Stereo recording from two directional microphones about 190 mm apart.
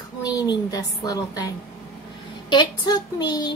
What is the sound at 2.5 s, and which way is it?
A woman's voice, 20° left (ahead or behind).